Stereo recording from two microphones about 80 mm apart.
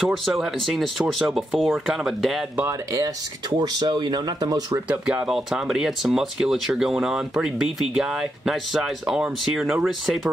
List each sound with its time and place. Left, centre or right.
0.1 s speech: centre
2.9 s speech: right
5.1 s speech: centre